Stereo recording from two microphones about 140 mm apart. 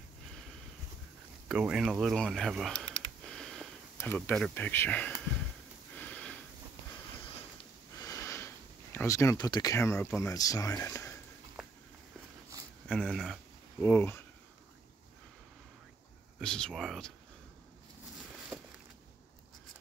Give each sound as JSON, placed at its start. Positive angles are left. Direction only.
{"t": 1.5, "sound": "speech", "side_deg": -5}
{"t": 3.3, "sound": "a sound", "side_deg": 5}
{"t": 4.3, "sound": "speech", "side_deg": 10}
{"t": 5.9, "sound": "sniff", "side_deg": 10}
{"t": 8.0, "sound": "sniff", "side_deg": 25}
{"t": 8.9, "sound": "speech", "side_deg": 20}
{"t": 11.6, "sound": "a sound", "side_deg": 0}
{"t": 12.8, "sound": "speech", "side_deg": 5}
{"t": 13.7, "sound": "speech", "side_deg": 15}
{"t": 16.3, "sound": "speech", "side_deg": 5}